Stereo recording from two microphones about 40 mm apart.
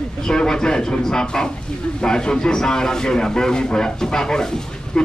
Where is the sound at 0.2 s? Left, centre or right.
Centre.